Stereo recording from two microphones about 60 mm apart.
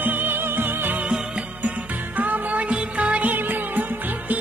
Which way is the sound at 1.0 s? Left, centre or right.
Centre.